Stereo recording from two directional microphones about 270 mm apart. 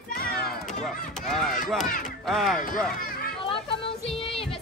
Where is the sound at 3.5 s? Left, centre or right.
Centre.